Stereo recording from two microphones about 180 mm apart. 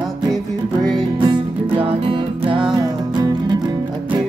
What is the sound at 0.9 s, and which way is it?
Music, 25° right (ahead or behind).